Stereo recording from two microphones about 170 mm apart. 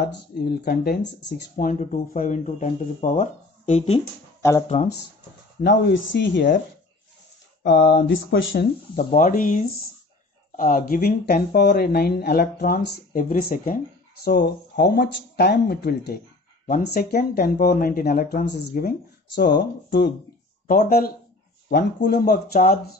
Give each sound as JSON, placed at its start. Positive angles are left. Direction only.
{"t": 0.0, "sound": "speech", "side_deg": 70}
{"t": 1.6, "sound": "speech", "side_deg": 50}
{"t": 4.4, "sound": "speech", "side_deg": 20}
{"t": 5.6, "sound": "speech", "side_deg": 85}
{"t": 7.6, "sound": "speech", "side_deg": 90}
{"t": 8.9, "sound": "speech", "side_deg": 55}
{"t": 14.2, "sound": "speech", "side_deg": 75}
{"t": 16.6, "sound": "speech", "side_deg": 55}
{"t": 20.6, "sound": "speech", "side_deg": 60}
{"t": 21.6, "sound": "speech", "side_deg": 75}